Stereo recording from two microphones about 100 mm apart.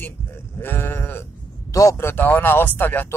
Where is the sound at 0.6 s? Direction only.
20° left (ahead or behind).